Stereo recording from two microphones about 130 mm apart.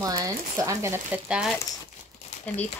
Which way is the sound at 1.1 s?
5° right (ahead or behind).